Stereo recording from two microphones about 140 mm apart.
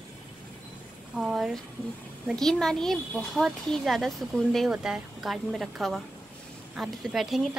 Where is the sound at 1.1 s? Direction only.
5° right (ahead or behind).